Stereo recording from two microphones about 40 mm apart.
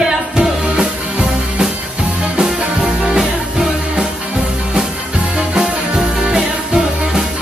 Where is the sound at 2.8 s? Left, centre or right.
Centre.